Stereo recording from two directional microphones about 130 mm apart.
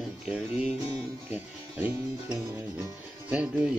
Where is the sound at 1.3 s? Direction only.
10° right (ahead or behind).